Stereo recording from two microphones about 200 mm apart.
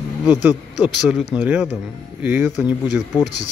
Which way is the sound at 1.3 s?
10° right (ahead or behind).